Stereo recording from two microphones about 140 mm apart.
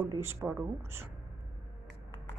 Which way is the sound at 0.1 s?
20° right (ahead or behind).